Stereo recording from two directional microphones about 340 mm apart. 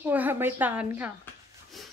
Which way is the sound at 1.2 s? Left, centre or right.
Centre.